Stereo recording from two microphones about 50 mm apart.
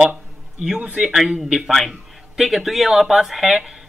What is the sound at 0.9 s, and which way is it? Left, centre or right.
Speech, centre.